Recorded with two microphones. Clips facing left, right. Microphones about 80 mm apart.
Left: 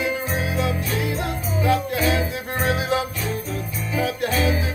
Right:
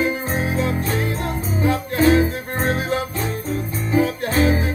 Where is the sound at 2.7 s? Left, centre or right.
Left.